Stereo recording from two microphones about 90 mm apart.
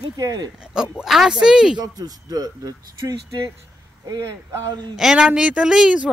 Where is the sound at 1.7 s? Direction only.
45° right (ahead or behind).